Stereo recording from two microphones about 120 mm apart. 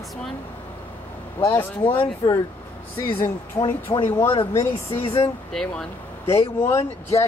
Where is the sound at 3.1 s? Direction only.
20° left (ahead or behind).